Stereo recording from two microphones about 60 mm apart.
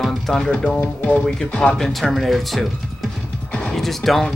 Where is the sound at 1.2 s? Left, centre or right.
Centre.